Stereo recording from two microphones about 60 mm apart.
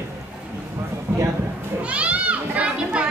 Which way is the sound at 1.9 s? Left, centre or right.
Right.